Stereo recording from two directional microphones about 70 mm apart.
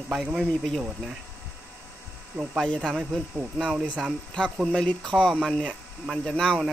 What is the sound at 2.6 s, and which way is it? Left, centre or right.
Speech, centre.